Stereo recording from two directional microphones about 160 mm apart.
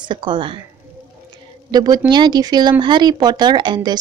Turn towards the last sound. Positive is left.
turn(degrees=-25)  # may be behind; listen again after turning